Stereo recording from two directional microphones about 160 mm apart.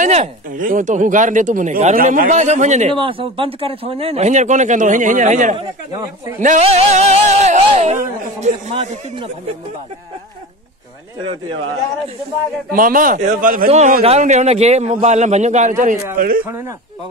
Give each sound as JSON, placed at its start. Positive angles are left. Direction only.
{"t": 0.0, "sound": "speech", "side_deg": -50}
{"t": 2.9, "sound": "speech", "side_deg": -35}
{"t": 5.6, "sound": "speech", "side_deg": -25}
{"t": 6.4, "sound": "a man's voice", "side_deg": -45}
{"t": 12.7, "sound": "a man's voice", "side_deg": -60}
{"t": 13.7, "sound": "a man's voice", "side_deg": -45}
{"t": 16.4, "sound": "a man's voice", "side_deg": -20}